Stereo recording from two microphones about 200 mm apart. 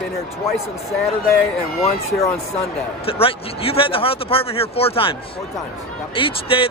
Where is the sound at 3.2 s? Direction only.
30° left (ahead or behind).